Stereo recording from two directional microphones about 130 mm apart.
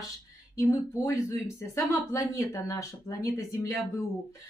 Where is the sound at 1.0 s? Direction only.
25° left (ahead or behind).